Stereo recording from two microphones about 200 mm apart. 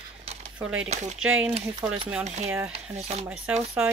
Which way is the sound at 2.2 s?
35° right (ahead or behind).